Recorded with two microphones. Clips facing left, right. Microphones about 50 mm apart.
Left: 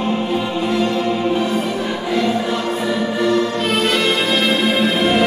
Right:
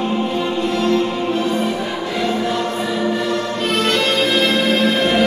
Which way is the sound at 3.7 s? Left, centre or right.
Centre.